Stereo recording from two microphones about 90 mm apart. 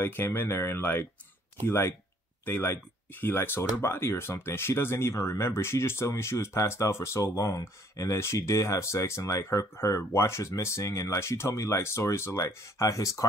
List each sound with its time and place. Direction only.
0.0 s speech: 25° left (ahead or behind)